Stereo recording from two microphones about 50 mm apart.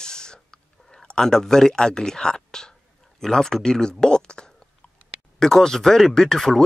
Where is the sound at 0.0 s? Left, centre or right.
Centre.